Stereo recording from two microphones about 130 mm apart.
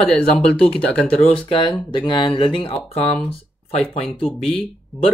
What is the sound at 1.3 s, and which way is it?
Speech, 40° left (ahead or behind).